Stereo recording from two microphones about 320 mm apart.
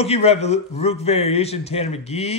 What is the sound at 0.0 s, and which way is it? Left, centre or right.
Speech, centre.